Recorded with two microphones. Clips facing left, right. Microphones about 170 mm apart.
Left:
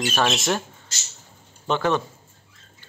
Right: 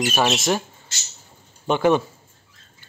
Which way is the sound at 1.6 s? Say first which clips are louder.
Right 4 dB; 10° right (ahead or behind).